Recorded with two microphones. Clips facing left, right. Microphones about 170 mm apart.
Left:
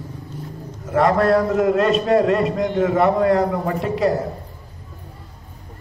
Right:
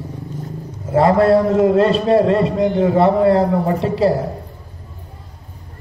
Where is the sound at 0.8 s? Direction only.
30° right (ahead or behind).